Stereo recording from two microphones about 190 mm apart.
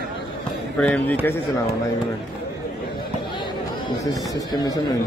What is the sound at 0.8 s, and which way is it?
Speech, 5° left (ahead or behind).